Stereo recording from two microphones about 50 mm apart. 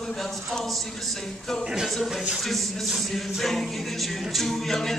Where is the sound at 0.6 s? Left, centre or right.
Centre.